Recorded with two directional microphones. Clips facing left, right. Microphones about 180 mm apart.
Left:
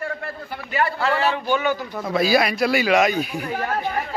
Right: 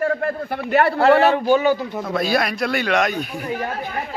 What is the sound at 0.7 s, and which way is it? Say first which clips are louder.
Speech: right 8 dB; 60° right (ahead or behind).